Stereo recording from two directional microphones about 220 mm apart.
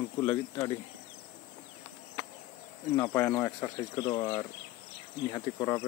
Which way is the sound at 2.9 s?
10° left (ahead or behind).